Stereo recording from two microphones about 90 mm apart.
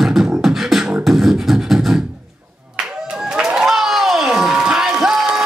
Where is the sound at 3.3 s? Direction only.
5° right (ahead or behind).